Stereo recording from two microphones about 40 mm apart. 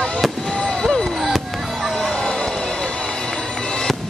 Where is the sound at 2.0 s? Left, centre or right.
Centre.